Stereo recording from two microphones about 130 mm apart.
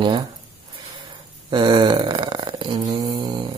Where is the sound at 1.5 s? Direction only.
35° right (ahead or behind).